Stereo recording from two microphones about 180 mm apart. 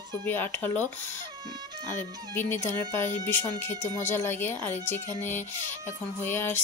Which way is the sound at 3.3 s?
10° left (ahead or behind).